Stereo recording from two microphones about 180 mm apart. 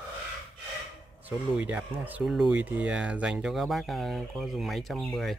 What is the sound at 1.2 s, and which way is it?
Speech, 10° right (ahead or behind).